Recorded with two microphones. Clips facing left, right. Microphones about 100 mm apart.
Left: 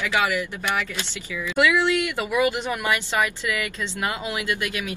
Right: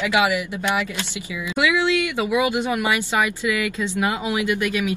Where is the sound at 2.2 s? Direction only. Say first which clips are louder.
Right 2 dB; 15° right (ahead or behind).